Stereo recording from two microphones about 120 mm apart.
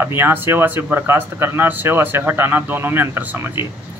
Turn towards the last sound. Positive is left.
turn(degrees=-15)  # may be behind; listen again after turning